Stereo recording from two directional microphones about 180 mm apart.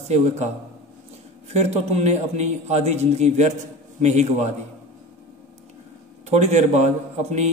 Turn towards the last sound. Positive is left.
turn(degrees=-40)  # may be behind; listen again after turning